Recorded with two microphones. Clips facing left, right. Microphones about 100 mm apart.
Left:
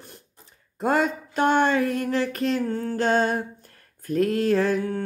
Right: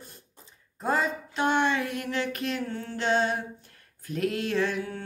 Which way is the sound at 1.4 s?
45° left (ahead or behind).